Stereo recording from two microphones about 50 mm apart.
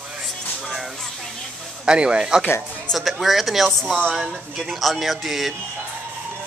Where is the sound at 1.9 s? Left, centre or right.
Centre.